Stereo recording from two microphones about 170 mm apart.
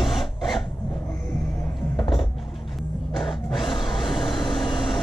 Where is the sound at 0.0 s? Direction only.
Centre (ahead or behind).